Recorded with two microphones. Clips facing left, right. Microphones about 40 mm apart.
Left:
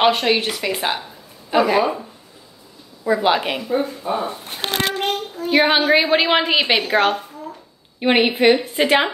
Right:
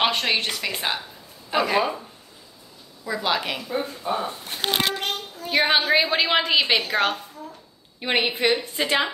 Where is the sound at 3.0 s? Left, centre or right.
Left.